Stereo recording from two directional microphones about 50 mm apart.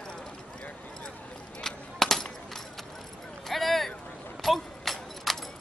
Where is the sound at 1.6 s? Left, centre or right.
Centre.